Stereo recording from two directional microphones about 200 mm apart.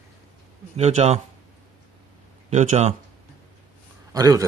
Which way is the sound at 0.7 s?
35° right (ahead or behind).